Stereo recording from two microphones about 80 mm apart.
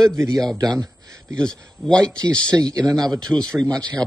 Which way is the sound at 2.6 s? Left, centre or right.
Right.